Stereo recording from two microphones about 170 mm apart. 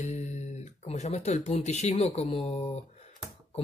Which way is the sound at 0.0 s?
40° left (ahead or behind).